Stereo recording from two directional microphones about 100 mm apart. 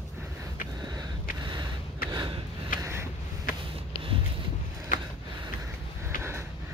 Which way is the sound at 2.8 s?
25° right (ahead or behind).